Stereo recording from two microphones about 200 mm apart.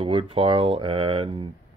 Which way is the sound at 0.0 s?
25° right (ahead or behind).